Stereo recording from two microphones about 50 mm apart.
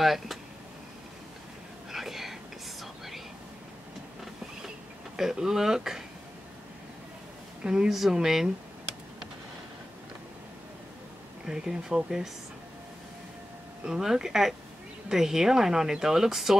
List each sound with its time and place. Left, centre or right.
0.0 s a sound: centre
1.9 s whispering: centre
5.1 s a woman's voice: centre
7.6 s a woman's voice: centre
11.4 s a woman's voice: centre
13.8 s a woman's voice: centre